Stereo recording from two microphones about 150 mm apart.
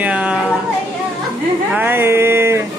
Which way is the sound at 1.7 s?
15° right (ahead or behind).